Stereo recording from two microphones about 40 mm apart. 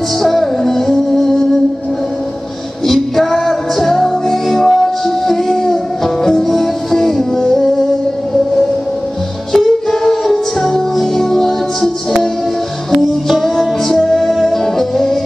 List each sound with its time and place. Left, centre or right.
0.2 s music: centre
2.9 s music: centre
9.5 s music: centre
13.3 s music: centre